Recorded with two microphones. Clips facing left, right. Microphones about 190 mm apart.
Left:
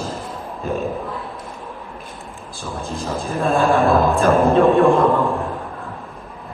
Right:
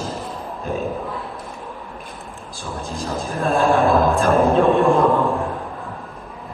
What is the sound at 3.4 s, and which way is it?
A man's voice, centre (ahead or behind).